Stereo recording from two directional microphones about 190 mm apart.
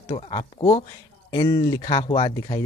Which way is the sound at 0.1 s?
25° left (ahead or behind).